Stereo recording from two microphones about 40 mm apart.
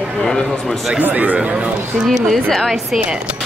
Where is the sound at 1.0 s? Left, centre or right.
Right.